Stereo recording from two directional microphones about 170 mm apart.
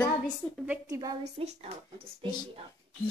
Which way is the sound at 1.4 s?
35° right (ahead or behind).